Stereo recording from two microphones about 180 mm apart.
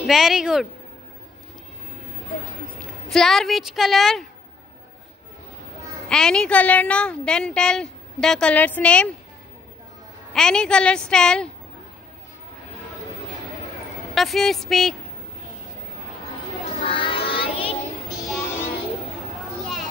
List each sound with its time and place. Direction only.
0.0 s a woman's voice: centre (ahead or behind)
3.1 s a woman's voice: centre (ahead or behind)
6.0 s a woman's voice: 5° left (ahead or behind)
10.3 s a woman's voice: 5° left (ahead or behind)
14.1 s a woman's voice: centre (ahead or behind)
16.8 s child singing: 30° left (ahead or behind)
18.4 s child singing: 15° left (ahead or behind)